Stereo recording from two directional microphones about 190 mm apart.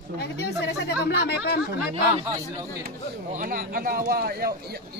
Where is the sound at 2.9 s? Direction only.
45° right (ahead or behind).